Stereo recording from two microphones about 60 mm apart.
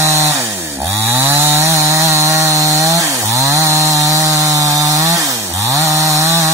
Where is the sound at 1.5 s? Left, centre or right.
Right.